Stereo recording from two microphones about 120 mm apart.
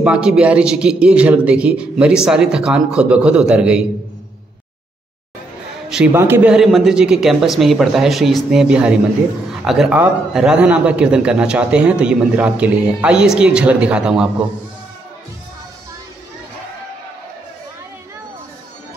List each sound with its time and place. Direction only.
0.0 s a man's voice: 5° right (ahead or behind)
6.1 s a man's voice: 20° right (ahead or behind)
6.5 s a man's voice: centre (ahead or behind)